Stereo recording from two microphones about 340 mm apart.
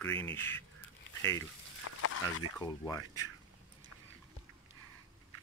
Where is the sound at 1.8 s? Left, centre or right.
Left.